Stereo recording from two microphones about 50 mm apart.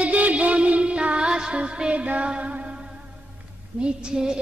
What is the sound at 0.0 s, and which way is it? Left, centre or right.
Music, right.